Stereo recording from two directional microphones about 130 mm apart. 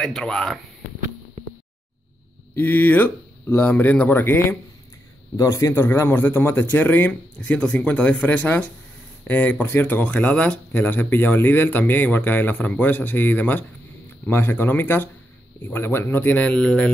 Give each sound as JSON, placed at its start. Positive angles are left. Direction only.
{"t": 0.0, "sound": "speech", "side_deg": 5}
{"t": 1.4, "sound": "music", "side_deg": -60}
{"t": 2.5, "sound": "speech", "side_deg": 15}